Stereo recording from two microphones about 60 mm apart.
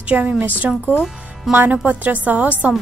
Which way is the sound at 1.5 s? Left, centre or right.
Centre.